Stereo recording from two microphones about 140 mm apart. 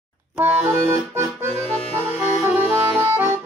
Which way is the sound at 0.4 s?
15° right (ahead or behind).